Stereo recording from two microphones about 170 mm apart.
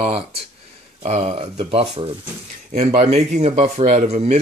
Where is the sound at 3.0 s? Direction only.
45° right (ahead or behind).